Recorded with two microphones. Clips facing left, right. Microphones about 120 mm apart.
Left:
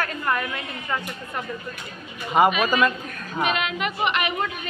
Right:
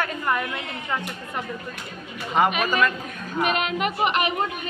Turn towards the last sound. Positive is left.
turn(degrees=-40)  # may be behind; listen again after turning